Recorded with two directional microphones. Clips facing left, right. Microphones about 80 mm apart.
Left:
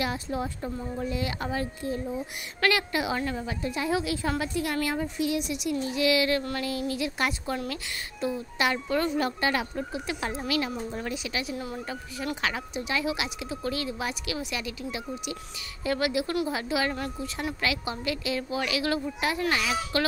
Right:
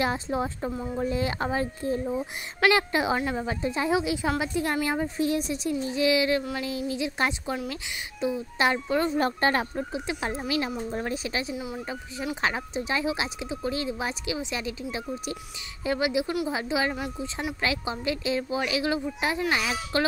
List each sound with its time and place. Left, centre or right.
0.0 s speech: right
6.9 s speech: right
9.1 s speech: right
9.8 s speech: right
11.5 s speech: centre
12.4 s speech: right